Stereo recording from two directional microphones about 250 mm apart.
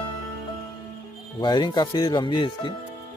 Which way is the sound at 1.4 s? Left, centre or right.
Centre.